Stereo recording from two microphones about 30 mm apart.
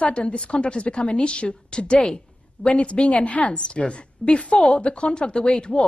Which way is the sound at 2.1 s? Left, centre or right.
Left.